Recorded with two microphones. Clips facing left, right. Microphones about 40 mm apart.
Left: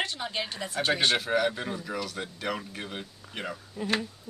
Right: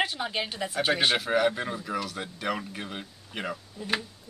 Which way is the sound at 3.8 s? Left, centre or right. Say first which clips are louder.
Left 1 dB; left.